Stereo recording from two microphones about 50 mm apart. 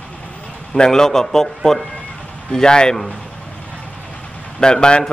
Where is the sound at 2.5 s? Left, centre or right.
Centre.